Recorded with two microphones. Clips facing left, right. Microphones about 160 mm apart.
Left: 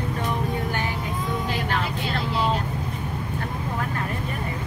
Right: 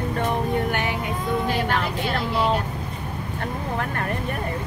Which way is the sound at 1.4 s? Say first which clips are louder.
Right 3 dB; 55° right (ahead or behind).